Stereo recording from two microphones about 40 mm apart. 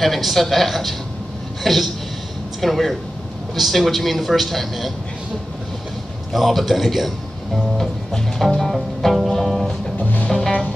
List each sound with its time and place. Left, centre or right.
0.0 s speech: centre
6.3 s speech: centre
8.5 s music: centre
9.9 s music: left